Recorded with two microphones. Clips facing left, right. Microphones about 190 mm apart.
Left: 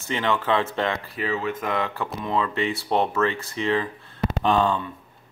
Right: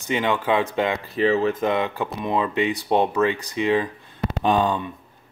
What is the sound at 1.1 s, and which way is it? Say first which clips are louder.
Speech: right 7 dB; 35° right (ahead or behind).